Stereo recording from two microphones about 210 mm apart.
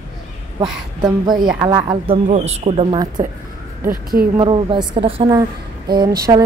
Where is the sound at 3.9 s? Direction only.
45° right (ahead or behind).